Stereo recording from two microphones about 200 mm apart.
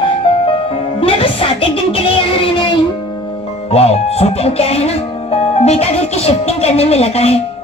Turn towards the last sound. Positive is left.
turn(degrees=30)  # may be behind; listen again after turning